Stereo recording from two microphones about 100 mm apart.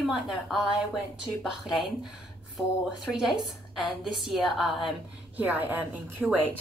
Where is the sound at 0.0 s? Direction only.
Centre (ahead or behind).